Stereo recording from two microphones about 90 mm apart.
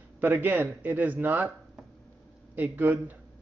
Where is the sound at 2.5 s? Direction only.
20° right (ahead or behind).